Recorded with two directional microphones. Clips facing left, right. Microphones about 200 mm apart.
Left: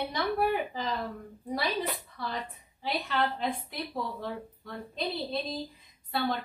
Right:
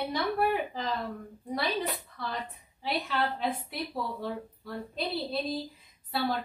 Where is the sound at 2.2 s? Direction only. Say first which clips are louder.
Even; centre (ahead or behind).